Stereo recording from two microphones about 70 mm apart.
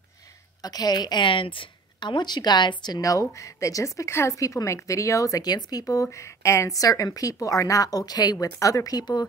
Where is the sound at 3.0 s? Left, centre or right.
Left.